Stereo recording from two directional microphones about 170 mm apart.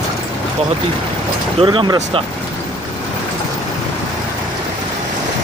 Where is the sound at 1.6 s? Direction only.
30° right (ahead or behind).